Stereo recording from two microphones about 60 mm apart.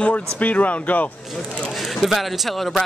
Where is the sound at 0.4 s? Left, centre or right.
Left.